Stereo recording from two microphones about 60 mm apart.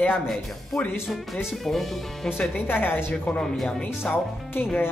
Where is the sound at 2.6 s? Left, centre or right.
Left.